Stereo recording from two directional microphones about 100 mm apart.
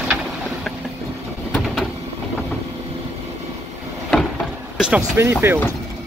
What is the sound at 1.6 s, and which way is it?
Vehicle, 5° left (ahead or behind).